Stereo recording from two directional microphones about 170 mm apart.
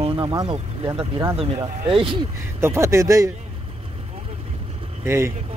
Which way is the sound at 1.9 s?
30° right (ahead or behind).